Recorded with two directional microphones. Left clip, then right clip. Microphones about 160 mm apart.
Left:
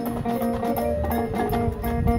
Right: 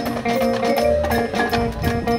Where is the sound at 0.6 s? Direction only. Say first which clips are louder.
Right 8 dB; 15° right (ahead or behind).